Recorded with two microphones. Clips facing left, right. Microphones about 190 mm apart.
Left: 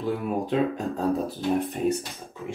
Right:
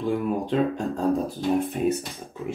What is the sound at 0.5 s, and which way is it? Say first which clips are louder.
Speech: right 1 dB; centre (ahead or behind).